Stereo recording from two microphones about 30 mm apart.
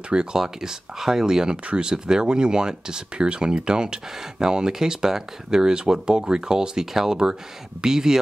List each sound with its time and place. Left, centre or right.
0.1 s speech: right
0.4 s speech: centre
6.9 s speech: centre